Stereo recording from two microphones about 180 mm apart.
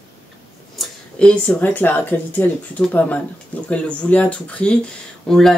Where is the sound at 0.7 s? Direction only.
5° left (ahead or behind).